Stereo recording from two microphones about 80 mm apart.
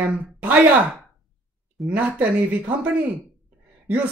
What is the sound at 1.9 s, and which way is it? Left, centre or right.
A woman's voice, centre.